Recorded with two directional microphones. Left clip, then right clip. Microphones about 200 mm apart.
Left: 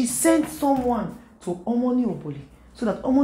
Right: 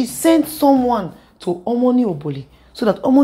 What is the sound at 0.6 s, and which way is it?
A woman's voice, 30° right (ahead or behind).